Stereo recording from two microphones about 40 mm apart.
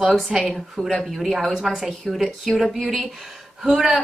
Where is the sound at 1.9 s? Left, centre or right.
Centre.